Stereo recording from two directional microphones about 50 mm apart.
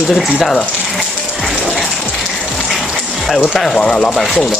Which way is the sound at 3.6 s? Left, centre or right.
Centre.